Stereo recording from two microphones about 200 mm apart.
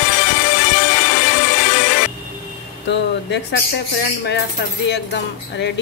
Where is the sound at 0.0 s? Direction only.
60° left (ahead or behind).